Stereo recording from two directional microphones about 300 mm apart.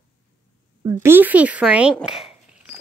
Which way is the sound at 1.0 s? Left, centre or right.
Centre.